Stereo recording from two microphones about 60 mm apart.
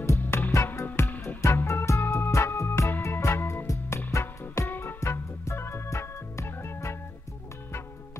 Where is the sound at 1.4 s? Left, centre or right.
Left.